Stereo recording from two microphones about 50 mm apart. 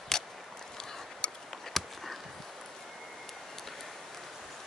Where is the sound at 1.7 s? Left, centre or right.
Centre.